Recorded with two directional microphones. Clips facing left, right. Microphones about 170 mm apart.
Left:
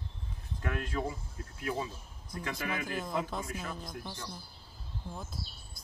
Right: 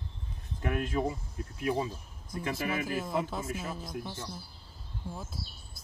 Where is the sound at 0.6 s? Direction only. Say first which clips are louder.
Right 4 dB; 20° right (ahead or behind).